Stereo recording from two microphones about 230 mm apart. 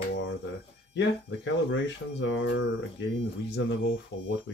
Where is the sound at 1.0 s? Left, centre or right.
Left.